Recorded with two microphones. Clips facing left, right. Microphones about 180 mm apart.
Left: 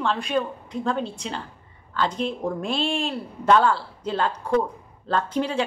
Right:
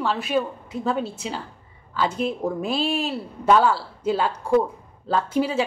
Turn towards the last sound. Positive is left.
turn(degrees=-5)  # may be behind; listen again after turning